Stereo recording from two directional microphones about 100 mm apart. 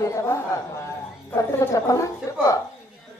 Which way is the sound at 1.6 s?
35° left (ahead or behind).